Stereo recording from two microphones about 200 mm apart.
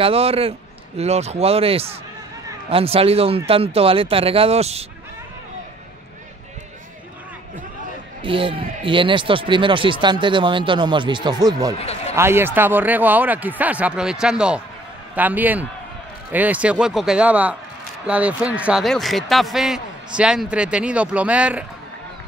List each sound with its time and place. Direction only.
0.0 s speech: 30° right (ahead or behind)
8.2 s speech: 25° right (ahead or behind); by 21.6 s 5° right (ahead or behind)